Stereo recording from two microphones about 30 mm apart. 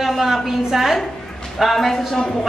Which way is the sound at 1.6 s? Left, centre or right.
Centre.